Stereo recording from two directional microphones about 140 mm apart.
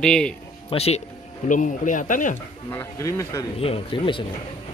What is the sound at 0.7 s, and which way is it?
Speech, 45° left (ahead or behind).